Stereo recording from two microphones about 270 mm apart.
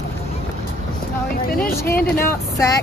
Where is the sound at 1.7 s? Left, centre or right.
Centre.